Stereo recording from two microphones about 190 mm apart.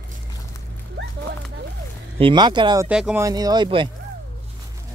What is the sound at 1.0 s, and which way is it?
Horse, 70° right (ahead or behind).